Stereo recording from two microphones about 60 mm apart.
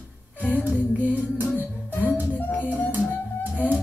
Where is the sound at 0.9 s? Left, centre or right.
Right.